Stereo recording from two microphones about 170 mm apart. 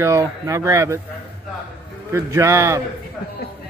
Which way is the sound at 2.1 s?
15° right (ahead or behind).